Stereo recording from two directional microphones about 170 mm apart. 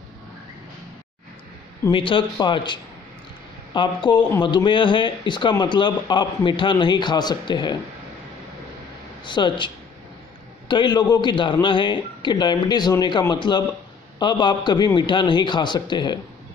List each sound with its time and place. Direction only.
1.9 s speech: 30° left (ahead or behind)
9.2 s speech: 25° left (ahead or behind)
10.7 s speech: 25° left (ahead or behind)